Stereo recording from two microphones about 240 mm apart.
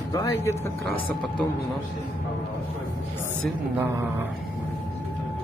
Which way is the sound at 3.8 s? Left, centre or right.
Centre.